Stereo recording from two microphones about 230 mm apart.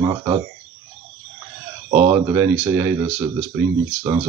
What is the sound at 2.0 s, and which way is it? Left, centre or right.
Speech, centre.